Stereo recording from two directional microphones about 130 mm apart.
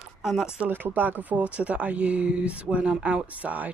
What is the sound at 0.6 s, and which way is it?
Speech, 15° right (ahead or behind).